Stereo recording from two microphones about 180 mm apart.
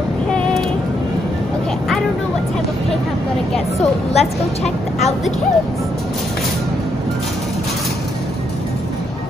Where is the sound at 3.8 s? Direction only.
35° left (ahead or behind).